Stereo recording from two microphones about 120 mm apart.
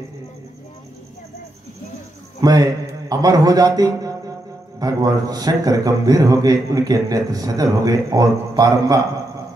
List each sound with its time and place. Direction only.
2.4 s a man's voice: 30° right (ahead or behind)